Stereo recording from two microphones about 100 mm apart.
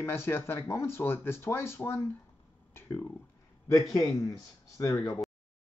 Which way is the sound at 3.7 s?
35° left (ahead or behind).